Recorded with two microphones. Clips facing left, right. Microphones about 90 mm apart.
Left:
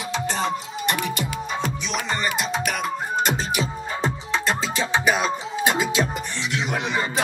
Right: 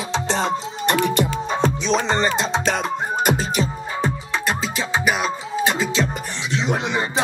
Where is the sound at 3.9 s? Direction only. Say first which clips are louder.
Right 1 dB; 25° left (ahead or behind).